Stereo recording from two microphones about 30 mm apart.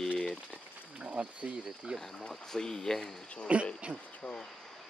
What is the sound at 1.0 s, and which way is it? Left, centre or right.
Speech, right.